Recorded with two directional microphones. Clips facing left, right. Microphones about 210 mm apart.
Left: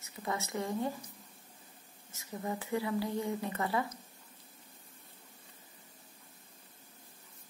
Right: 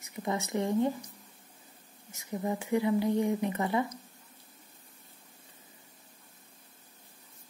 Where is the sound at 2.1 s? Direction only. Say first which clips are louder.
Right 5 dB; 15° right (ahead or behind).